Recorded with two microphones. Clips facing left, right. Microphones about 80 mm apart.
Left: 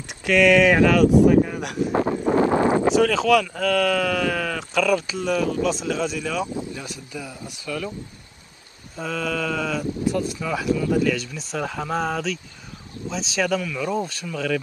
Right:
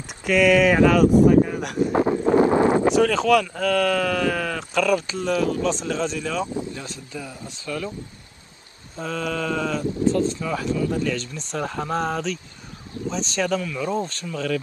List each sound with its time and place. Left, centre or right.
0.3 s speech: centre
2.0 s a sound: right
2.9 s speech: centre
6.5 s speech: centre
8.9 s speech: centre
10.0 s speech: centre